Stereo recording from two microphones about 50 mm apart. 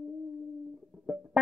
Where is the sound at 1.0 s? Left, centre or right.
Centre.